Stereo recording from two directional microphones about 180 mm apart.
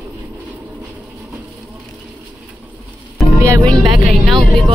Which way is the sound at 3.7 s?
Centre (ahead or behind).